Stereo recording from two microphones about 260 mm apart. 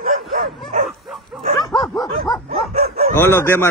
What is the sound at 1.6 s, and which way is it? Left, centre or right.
Dog, centre.